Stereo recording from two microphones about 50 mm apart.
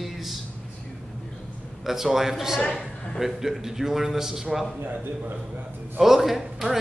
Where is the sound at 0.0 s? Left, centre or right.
Centre.